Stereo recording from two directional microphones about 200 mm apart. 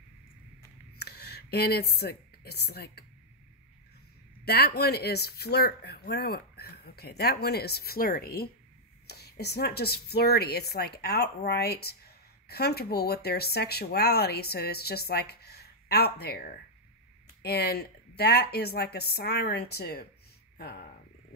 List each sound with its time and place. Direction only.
0.9 s speech: 55° left (ahead or behind)
4.5 s speech: 50° left (ahead or behind)